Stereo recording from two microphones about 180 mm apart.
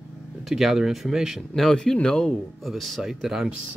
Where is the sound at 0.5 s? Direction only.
Centre (ahead or behind).